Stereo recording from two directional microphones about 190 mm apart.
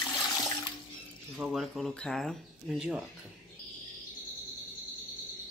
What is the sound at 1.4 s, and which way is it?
Speech, centre (ahead or behind).